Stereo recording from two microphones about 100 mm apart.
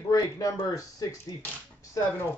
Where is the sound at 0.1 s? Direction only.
35° left (ahead or behind).